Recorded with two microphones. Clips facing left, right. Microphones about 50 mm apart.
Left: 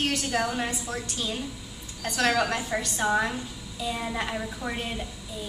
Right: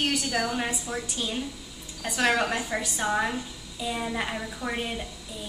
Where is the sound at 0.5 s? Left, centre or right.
Centre.